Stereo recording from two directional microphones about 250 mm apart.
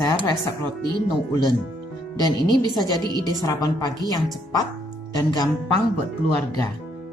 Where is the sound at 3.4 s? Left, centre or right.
Centre.